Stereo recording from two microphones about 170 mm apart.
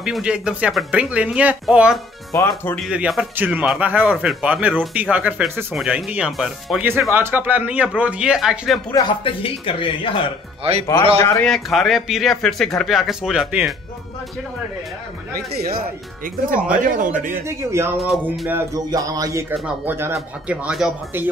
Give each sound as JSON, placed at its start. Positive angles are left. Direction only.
{"t": 0.0, "sound": "speech", "side_deg": -5}
{"t": 2.3, "sound": "speech", "side_deg": 15}
{"t": 2.8, "sound": "a man's voice", "side_deg": -5}
{"t": 7.1, "sound": "a man's voice", "side_deg": -15}
{"t": 8.9, "sound": "speech", "side_deg": 30}
{"t": 10.6, "sound": "a man's voice", "side_deg": -40}
{"t": 11.4, "sound": "speech", "side_deg": 0}
{"t": 16.7, "sound": "speech", "side_deg": -50}
{"t": 17.4, "sound": "a man's voice", "side_deg": -15}
{"t": 17.9, "sound": "speech", "side_deg": 0}
{"t": 18.5, "sound": "a man's voice", "side_deg": -20}